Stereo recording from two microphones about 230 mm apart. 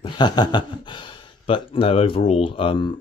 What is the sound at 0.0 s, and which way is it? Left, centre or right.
Speech, centre.